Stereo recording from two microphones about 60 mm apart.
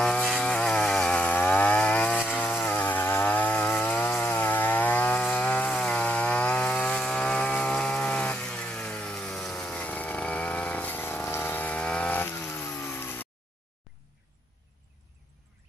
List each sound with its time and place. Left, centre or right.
0.0 s chainsaw: centre
12.1 s chainsaw: left